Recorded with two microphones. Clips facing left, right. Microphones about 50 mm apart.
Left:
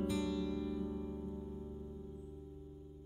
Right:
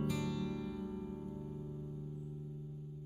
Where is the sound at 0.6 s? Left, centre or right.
Centre.